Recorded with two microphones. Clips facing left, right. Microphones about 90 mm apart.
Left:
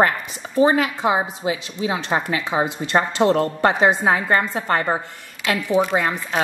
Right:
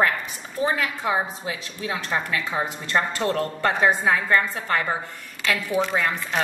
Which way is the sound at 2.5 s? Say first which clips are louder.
Left 6 dB; 15° left (ahead or behind).